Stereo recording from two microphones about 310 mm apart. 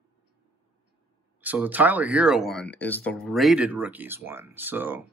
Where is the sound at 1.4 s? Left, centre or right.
Centre.